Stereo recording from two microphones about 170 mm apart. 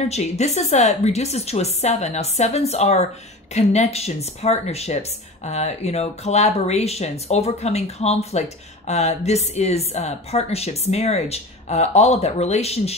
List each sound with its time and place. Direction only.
0.1 s speech: 40° left (ahead or behind)